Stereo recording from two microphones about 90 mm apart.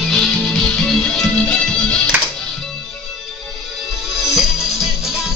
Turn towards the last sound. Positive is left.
turn(degrees=-5)  # may be behind; listen again after turning